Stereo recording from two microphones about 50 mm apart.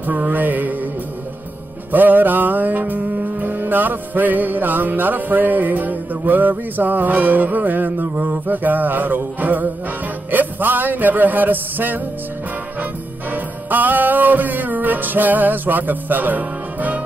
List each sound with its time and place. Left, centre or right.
0.0 s music: right
1.9 s music: right
13.3 s music: right